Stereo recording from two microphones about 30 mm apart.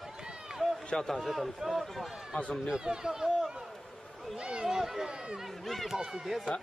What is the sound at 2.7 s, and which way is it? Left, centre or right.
Speech, right.